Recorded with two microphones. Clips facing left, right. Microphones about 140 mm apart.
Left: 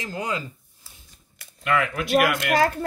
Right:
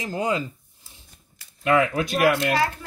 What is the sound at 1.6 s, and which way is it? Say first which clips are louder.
Speech: right 4 dB; 35° right (ahead or behind).